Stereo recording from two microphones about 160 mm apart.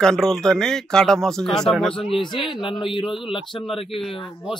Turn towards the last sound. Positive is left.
turn(degrees=35)  # may be behind; listen again after turning